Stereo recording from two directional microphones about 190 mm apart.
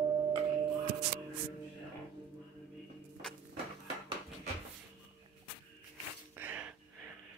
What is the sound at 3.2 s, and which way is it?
Music, 5° left (ahead or behind).